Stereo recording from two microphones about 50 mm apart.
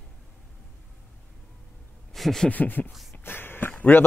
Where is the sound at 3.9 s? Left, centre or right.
Left.